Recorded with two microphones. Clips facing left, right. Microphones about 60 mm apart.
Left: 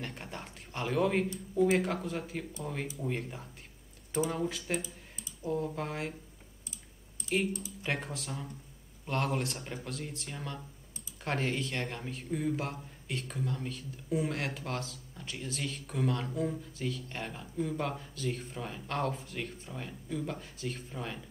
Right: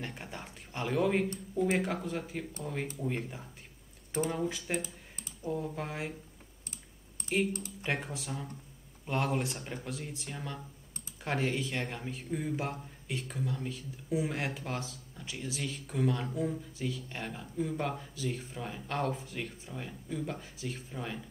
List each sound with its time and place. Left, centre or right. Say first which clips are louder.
0.0 s a man's voice: even; centre
7.8 s a man's voice: right 1 dB; centre